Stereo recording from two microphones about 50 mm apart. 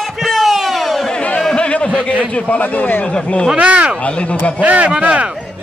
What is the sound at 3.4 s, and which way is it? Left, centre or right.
Speech, right.